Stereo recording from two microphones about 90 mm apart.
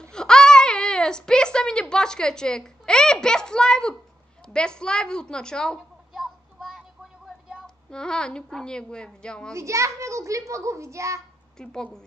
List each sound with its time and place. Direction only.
0.1 s speech: 10° left (ahead or behind)
6.1 s a sound: 5° right (ahead or behind)
7.9 s speech: 10° left (ahead or behind)
9.5 s a child's voice: 35° right (ahead or behind)
11.5 s speech: 10° left (ahead or behind)